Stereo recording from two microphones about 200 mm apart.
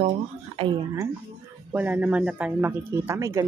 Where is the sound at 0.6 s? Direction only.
25° right (ahead or behind).